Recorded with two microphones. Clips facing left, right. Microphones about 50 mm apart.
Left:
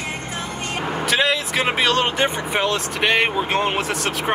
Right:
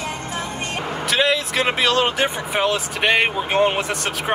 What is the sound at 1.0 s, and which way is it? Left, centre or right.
Speech, centre.